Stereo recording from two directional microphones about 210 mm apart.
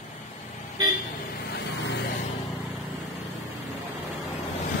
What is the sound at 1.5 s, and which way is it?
Vehicle, 55° left (ahead or behind).